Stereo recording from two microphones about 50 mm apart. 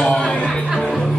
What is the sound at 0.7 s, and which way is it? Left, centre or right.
Music, centre.